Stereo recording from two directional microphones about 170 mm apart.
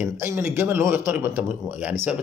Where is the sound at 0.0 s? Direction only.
15° right (ahead or behind).